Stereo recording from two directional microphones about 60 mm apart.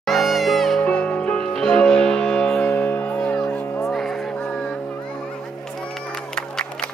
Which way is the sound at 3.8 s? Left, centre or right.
Centre.